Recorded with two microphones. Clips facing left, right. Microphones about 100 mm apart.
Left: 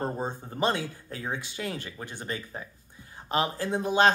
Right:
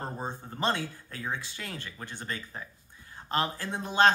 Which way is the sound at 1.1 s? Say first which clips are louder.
Left 2 dB; 15° left (ahead or behind).